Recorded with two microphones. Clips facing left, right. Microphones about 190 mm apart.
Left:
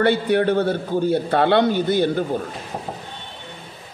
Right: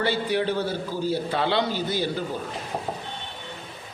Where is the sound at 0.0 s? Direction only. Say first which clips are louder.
Left 7 dB; 55° left (ahead or behind).